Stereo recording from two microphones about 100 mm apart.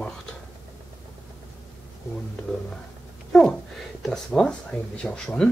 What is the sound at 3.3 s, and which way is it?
Speech, 5° left (ahead or behind).